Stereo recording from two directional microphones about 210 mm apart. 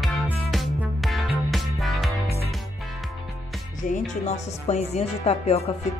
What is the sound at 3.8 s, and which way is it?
Speech, 35° left (ahead or behind).